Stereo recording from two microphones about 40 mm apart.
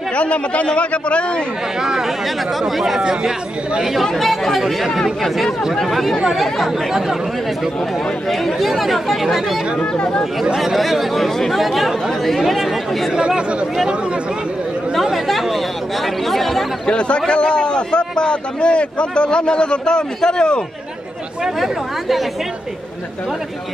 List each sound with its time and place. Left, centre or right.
0.1 s a man's voice: left
1.8 s speech: centre
4.0 s speech: centre
8.3 s speech: centre
10.6 s speech: centre
13.1 s speech: right
15.0 s chatter: centre
16.3 s speech: centre
16.8 s a man's voice: left
21.5 s speech: centre